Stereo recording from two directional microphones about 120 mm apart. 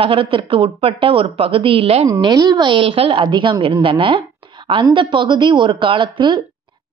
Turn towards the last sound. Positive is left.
turn(degrees=-40)  # may be behind; listen again after turning